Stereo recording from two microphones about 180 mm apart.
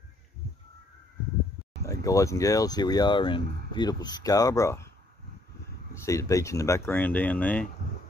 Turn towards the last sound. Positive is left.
turn(degrees=5)  # may be behind; listen again after turning